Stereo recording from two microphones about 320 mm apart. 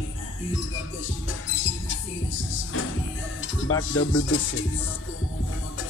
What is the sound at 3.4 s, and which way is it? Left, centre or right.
Speech, left.